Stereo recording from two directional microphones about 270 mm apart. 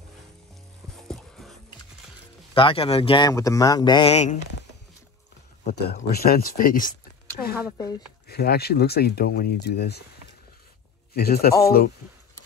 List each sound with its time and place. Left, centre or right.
1.0 s music: centre
2.5 s speech: centre
5.6 s speech: left
7.3 s a sound: left
7.7 s speech: centre
8.3 s speech: left
11.1 s speech: left